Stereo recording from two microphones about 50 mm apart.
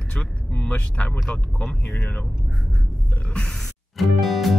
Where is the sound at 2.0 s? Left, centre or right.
Left.